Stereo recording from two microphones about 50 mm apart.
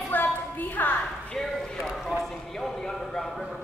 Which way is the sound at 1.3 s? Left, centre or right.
Centre.